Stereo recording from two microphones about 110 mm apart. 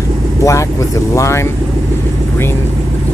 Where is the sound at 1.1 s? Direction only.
25° left (ahead or behind).